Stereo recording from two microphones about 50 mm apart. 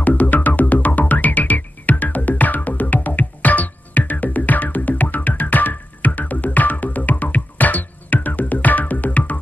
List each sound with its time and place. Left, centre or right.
0.0 s music: left